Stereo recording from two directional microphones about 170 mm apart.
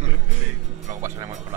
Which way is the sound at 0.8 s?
20° right (ahead or behind).